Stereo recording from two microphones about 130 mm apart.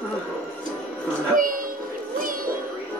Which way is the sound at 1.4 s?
90° right.